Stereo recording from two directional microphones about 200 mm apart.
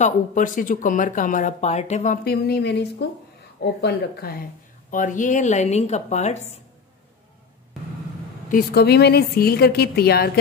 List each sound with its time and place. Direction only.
0.0 s speech: 40° left (ahead or behind)
2.2 s a woman's voice: 55° left (ahead or behind)
4.9 s speech: 40° left (ahead or behind)
8.5 s a woman's voice: 50° left (ahead or behind)